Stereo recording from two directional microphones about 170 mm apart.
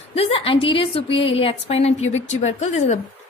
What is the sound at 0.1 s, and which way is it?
A woman's voice, 35° left (ahead or behind).